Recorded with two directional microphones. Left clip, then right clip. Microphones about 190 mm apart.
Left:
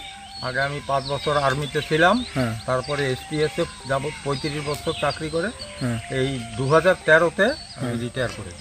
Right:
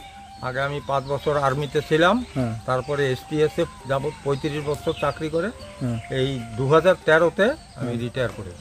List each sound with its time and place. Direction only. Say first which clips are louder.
0.4 s speech: left 1 dB; 20° right (ahead or behind)
5.8 s speech: left 2 dB; 5° left (ahead or behind)
6.1 s speech: right 1 dB; 20° right (ahead or behind)